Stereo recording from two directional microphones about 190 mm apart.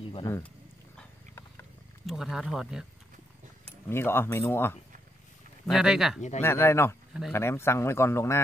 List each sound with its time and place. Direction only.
0.0 s wild animals: 30° left (ahead or behind)
2.0 s speech: centre (ahead or behind)
3.9 s a man's voice: 10° left (ahead or behind)
5.7 s speech: centre (ahead or behind)
6.4 s a man's voice: 15° left (ahead or behind)